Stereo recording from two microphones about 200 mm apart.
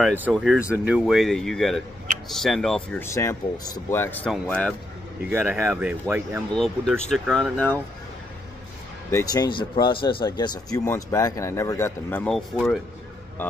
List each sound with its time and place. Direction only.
0.0 s speech: 10° right (ahead or behind)
5.3 s speech: 10° right (ahead or behind)
6.5 s speech: centre (ahead or behind)
9.1 s speech: 20° left (ahead or behind); by 12.8 s centre (ahead or behind)